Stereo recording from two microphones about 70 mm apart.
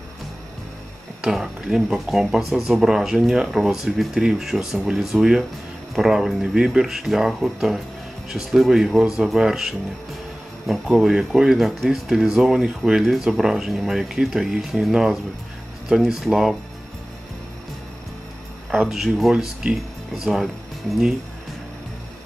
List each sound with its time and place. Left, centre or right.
1.2 s speech: centre
18.7 s speech: centre